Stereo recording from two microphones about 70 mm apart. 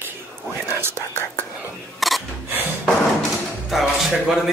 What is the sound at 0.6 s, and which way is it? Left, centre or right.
Speech, right.